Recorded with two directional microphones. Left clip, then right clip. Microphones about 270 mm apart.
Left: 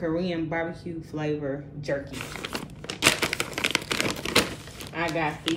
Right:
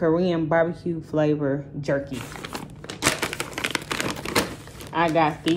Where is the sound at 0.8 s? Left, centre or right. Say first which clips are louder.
Right 7 dB; right.